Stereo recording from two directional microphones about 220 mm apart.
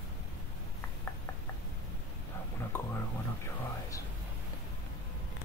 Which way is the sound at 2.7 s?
10° left (ahead or behind).